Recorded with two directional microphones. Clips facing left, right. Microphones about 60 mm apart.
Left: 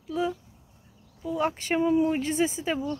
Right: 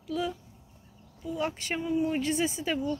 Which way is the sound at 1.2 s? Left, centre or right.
Left.